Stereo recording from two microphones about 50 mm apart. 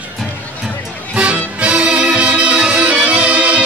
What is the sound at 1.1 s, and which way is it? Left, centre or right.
Music, right.